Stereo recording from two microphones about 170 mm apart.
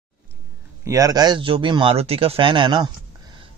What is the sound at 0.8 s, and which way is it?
Speech, 20° right (ahead or behind).